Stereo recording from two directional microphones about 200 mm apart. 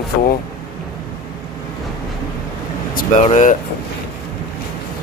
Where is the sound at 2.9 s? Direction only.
40° left (ahead or behind).